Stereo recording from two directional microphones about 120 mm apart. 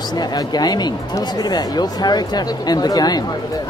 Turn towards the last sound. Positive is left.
turn(degrees=35)  # may be behind; listen again after turning